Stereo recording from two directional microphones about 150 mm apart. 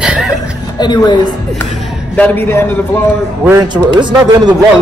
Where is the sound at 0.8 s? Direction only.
30° left (ahead or behind).